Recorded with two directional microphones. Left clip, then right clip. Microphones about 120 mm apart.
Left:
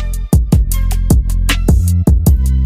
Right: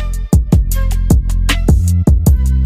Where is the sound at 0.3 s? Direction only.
Centre (ahead or behind).